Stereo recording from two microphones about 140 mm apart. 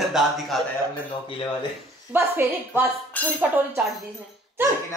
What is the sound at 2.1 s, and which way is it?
Speech, 15° right (ahead or behind).